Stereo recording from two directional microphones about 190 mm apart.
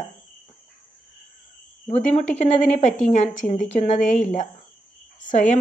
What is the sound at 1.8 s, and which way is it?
Speech, 35° left (ahead or behind).